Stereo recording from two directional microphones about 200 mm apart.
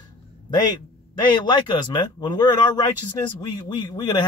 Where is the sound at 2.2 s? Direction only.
20° left (ahead or behind).